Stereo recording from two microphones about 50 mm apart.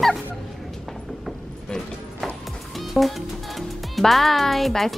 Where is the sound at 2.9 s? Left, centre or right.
Centre.